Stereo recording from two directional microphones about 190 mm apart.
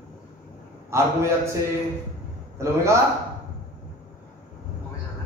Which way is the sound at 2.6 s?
15° right (ahead or behind).